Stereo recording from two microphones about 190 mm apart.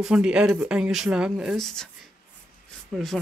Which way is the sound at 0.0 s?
5° right (ahead or behind).